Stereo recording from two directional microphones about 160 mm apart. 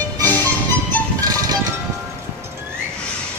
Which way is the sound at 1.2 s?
20° right (ahead or behind).